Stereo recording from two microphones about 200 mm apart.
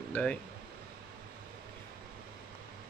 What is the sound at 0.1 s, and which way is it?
Speech, 5° left (ahead or behind).